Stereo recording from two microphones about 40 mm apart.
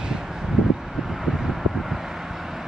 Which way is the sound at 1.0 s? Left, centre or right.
Centre.